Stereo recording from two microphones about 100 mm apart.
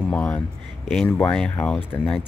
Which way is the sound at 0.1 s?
15° left (ahead or behind).